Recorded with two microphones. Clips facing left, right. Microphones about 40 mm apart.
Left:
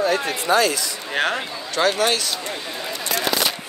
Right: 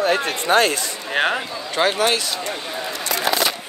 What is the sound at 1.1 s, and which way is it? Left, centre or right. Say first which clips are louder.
Speech: right 2 dB; centre.